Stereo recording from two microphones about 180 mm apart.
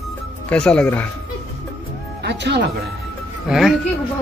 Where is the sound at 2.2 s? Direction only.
70° right (ahead or behind).